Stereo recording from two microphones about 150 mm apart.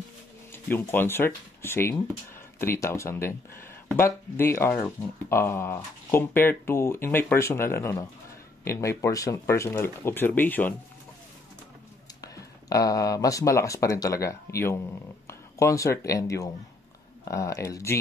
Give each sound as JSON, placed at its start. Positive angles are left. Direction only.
{"t": 0.5, "sound": "speech", "side_deg": 15}
{"t": 12.2, "sound": "speech", "side_deg": 25}